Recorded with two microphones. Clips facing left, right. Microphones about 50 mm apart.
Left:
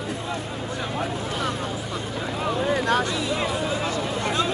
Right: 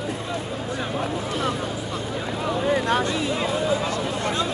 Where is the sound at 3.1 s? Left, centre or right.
Right.